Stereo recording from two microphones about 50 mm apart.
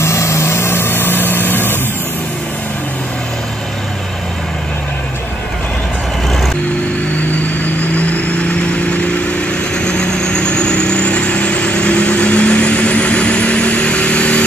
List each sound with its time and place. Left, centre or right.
0.0 s vehicle: left
7.6 s vehicle: left